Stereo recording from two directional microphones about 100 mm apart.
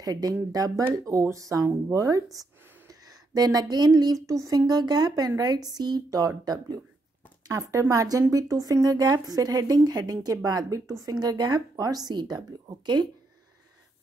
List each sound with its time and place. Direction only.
0.0 s speech: 40° right (ahead or behind)